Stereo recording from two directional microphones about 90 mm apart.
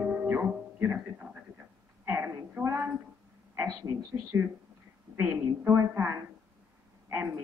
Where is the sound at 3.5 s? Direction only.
25° right (ahead or behind).